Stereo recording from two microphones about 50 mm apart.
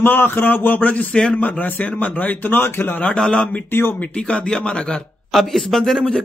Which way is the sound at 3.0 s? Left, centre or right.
Centre.